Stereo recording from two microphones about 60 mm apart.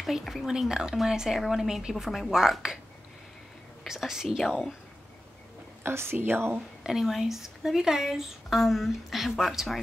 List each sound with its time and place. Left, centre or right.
0.0 s speech: centre
3.8 s speech: centre
5.9 s a woman's voice: right
6.8 s speech: centre